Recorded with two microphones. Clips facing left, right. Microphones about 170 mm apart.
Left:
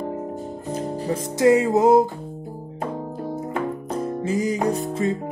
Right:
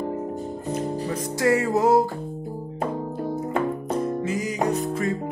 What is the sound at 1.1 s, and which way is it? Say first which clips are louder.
Music: left 6 dB; 20° left (ahead or behind).